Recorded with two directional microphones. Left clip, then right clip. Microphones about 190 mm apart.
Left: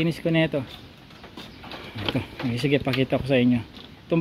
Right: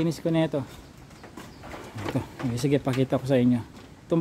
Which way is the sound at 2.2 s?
10° right (ahead or behind).